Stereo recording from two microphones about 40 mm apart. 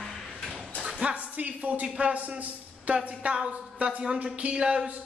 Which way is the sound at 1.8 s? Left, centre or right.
Right.